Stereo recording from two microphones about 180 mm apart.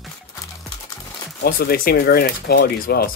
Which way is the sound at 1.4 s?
55° left (ahead or behind).